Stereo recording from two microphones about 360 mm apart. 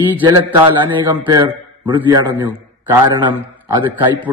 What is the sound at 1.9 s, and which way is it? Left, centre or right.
A man's voice, centre.